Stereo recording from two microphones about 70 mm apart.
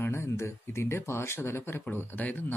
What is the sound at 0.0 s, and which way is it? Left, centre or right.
Speech, left.